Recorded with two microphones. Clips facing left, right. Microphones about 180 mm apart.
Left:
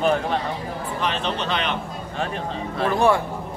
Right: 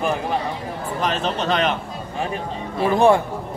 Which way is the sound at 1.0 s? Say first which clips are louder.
Right 3 dB; 40° right (ahead or behind).